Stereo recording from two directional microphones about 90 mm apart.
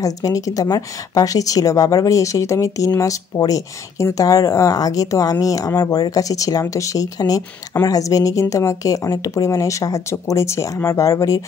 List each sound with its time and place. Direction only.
0.0 s speech: 40° left (ahead or behind)